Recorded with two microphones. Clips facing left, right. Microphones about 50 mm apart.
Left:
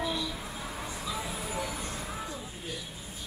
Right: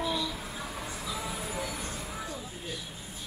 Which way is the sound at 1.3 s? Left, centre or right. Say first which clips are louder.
Even; centre.